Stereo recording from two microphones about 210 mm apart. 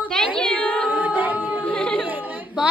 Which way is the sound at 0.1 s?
5° left (ahead or behind).